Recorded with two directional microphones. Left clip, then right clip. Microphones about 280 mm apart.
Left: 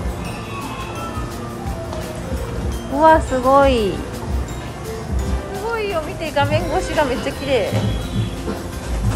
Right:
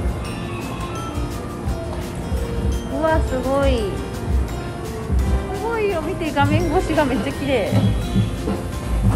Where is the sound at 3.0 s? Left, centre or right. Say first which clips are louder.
Left 8 dB; centre.